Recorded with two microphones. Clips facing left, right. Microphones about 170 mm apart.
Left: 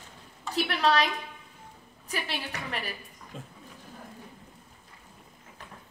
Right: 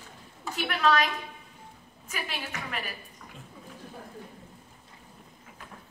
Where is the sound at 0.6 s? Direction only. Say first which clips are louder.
Even; 35° left (ahead or behind).